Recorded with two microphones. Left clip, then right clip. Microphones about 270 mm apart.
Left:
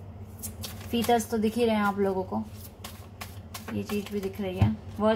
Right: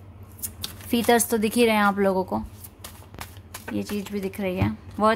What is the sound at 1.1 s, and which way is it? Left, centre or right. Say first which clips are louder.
Speech: right 4 dB; right.